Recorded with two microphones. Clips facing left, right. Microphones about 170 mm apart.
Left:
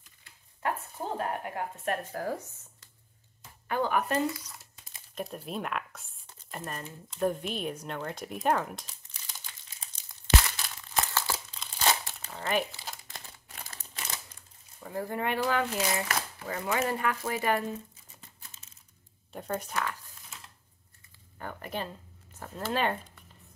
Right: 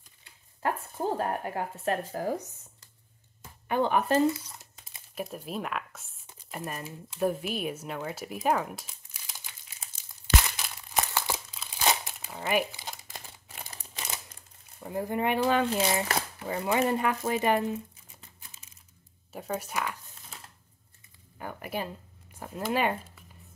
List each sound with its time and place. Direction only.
1.1 s speech: 30° right (ahead or behind)
3.6 s crumpling: 20° right (ahead or behind)
5.1 s a sound: centre (ahead or behind)
11.5 s crumpling: 5° right (ahead or behind)
14.8 s speech: 20° right (ahead or behind)
18.5 s a sound: 10° right (ahead or behind)
19.3 s speech: 5° right (ahead or behind)
21.4 s speech: 10° right (ahead or behind)